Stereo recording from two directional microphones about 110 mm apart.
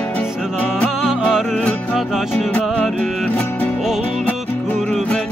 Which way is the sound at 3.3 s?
15° left (ahead or behind).